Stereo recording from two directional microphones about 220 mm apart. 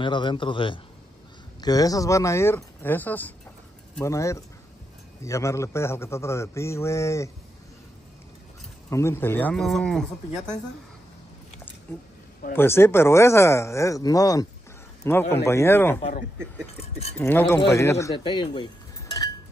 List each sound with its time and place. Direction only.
0.0 s a man's voice: 20° left (ahead or behind)
8.9 s a man's voice: 10° left (ahead or behind)
12.5 s a man's voice: 10° left (ahead or behind)
17.2 s a man's voice: 10° left (ahead or behind)